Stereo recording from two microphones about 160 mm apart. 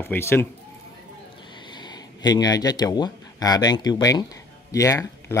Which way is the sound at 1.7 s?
25° left (ahead or behind).